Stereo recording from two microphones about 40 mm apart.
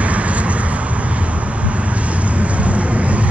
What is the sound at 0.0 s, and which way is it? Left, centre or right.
Vehicle, right.